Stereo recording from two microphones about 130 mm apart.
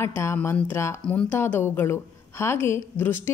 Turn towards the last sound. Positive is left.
turn(degrees=15)  # may be behind; listen again after turning